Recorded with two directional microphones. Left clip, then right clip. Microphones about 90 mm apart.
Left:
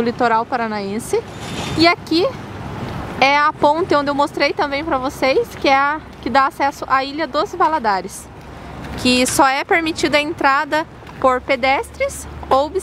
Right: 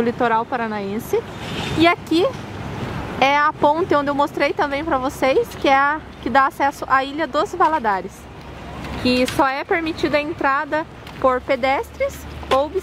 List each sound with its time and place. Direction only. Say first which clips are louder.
0.0 s speech: left 2 dB; 20° left (ahead or behind)
1.4 s a sound: left 1 dB; 40° left (ahead or behind)
1.8 s speech: left 2 dB; 5° left (ahead or behind)
9.0 s speech: left 4 dB; 35° left (ahead or behind)
11.4 s speech: left 2 dB; 15° left (ahead or behind)